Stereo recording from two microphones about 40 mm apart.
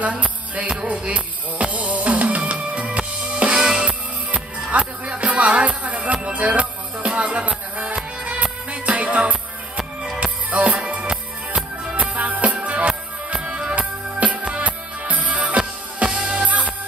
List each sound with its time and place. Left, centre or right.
0.0 s music: right